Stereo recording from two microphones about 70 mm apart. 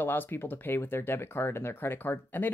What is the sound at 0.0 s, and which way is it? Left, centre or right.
Speech, left.